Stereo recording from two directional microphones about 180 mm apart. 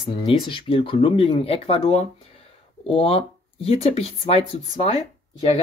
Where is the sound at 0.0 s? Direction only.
30° left (ahead or behind).